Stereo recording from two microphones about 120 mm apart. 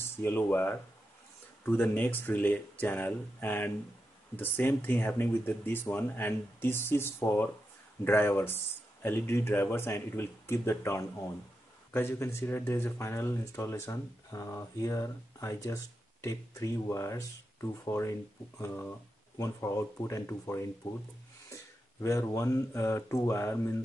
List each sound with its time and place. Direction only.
0.2 s speech: 15° left (ahead or behind)
22.0 s speech: 25° left (ahead or behind)